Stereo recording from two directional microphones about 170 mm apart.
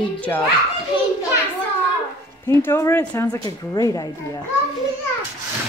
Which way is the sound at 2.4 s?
15° left (ahead or behind).